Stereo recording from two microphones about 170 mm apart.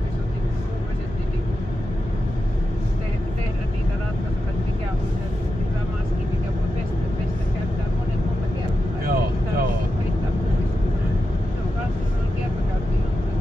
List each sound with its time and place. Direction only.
9.0 s vehicle: 60° right (ahead or behind)